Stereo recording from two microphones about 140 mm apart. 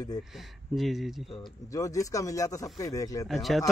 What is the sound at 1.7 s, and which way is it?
Speech, 25° left (ahead or behind).